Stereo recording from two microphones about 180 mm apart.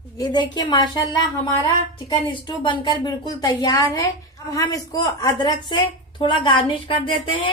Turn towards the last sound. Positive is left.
turn(degrees=30)  # may be behind; listen again after turning